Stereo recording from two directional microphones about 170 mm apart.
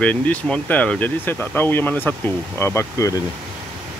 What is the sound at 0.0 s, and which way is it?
Speech, 10° left (ahead or behind).